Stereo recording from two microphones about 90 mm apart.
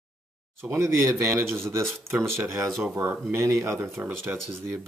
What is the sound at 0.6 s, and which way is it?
Speech, 30° right (ahead or behind).